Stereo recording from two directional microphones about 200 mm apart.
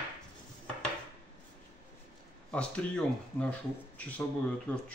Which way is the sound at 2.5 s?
5° left (ahead or behind).